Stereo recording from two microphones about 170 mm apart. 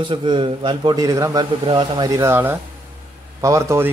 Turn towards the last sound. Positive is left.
turn(degrees=-15)  # may be behind; listen again after turning